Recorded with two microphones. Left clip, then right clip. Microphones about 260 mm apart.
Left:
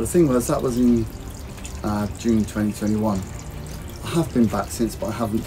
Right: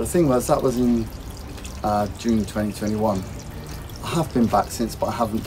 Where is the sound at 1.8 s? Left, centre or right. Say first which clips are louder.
Right 4 dB; centre.